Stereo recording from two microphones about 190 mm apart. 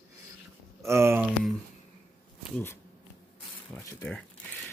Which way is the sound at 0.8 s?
15° right (ahead or behind).